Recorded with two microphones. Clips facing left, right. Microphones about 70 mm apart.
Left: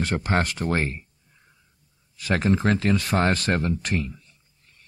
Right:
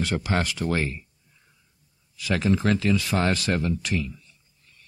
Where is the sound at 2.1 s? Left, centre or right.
Left.